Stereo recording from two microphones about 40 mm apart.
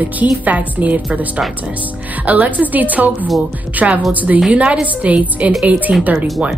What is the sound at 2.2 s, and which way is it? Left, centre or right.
A woman's voice, right.